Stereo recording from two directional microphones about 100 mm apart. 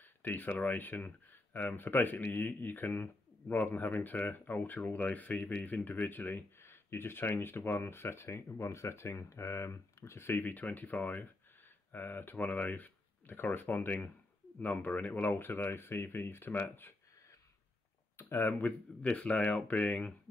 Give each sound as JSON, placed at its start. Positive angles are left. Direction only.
{"t": 0.0, "sound": "a sound", "side_deg": 20}
{"t": 0.7, "sound": "a man's voice", "side_deg": 20}
{"t": 18.1, "sound": "speech", "side_deg": 20}